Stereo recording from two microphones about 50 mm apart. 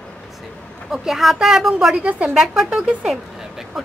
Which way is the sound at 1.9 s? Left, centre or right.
Right.